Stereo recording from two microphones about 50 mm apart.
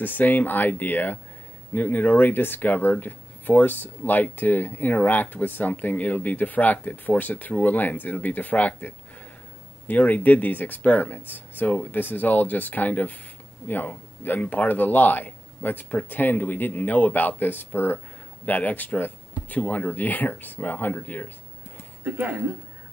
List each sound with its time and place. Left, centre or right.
0.0 s speech: left
18.4 s speech: left
22.0 s speech: right